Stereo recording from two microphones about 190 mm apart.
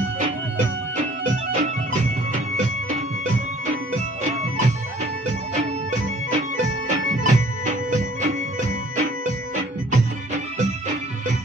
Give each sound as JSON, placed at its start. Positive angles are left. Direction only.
{"t": 1.3, "sound": "music", "side_deg": -40}